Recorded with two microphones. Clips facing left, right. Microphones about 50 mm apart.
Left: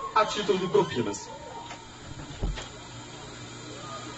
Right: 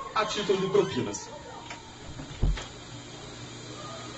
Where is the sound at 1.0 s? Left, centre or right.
Centre.